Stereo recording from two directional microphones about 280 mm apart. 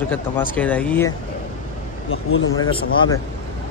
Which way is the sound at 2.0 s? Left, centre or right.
Left.